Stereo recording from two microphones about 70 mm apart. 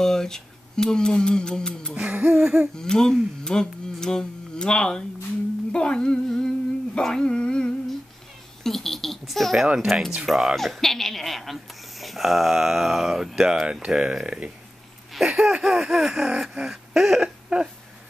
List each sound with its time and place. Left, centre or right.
0.0 s speech: centre
2.0 s a sound: centre
2.7 s speech: centre
5.7 s humming: centre
7.0 s speech: centre
15.1 s speech: centre
16.3 s a sound: centre